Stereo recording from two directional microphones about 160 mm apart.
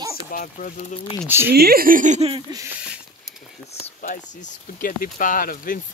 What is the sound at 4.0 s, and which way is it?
Speech, 55° left (ahead or behind).